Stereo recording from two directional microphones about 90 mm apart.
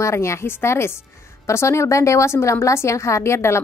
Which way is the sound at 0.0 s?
30° left (ahead or behind).